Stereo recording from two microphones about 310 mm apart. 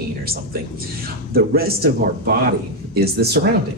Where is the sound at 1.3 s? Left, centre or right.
Right.